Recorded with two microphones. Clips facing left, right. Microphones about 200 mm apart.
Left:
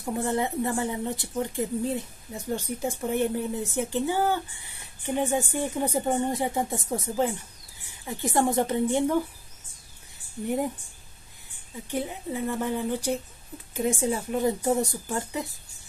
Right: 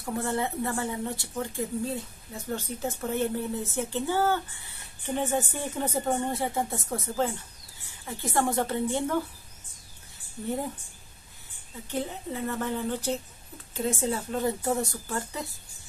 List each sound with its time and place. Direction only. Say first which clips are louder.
0.0 s a woman's voice: left 2 dB; 15° left (ahead or behind)
10.4 s a woman's voice: left 4 dB; 15° left (ahead or behind)
11.9 s a woman's voice: left 2 dB; 10° left (ahead or behind)